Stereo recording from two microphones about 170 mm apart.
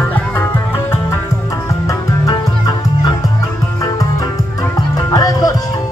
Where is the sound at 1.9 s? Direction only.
25° left (ahead or behind).